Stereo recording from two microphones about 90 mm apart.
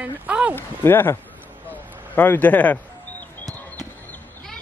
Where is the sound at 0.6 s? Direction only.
25° left (ahead or behind).